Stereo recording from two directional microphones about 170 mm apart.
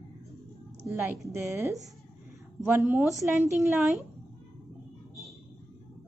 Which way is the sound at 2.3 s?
15° right (ahead or behind).